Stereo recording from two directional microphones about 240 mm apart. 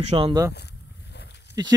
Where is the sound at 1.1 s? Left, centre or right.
Left.